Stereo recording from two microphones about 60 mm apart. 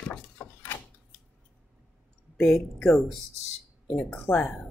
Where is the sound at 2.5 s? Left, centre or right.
Centre.